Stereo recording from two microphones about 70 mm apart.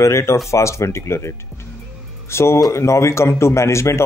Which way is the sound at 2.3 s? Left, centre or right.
Left.